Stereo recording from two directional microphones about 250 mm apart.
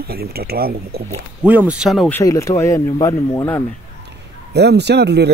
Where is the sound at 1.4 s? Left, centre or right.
Centre.